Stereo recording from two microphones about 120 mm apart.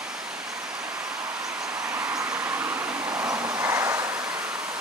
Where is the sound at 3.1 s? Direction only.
30° right (ahead or behind).